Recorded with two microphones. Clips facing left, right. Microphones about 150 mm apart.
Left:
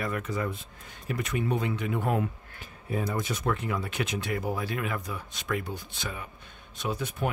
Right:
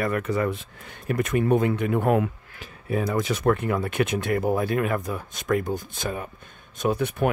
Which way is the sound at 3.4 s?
55° right (ahead or behind).